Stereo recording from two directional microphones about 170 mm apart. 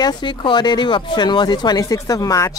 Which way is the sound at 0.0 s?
25° left (ahead or behind).